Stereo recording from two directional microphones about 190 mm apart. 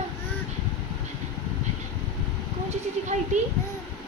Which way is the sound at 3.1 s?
40° right (ahead or behind).